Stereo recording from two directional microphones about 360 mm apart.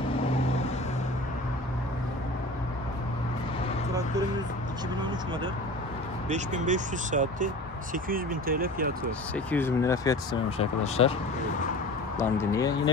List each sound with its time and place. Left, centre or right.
6.2 s speech: centre
9.3 s speech: centre
12.2 s speech: centre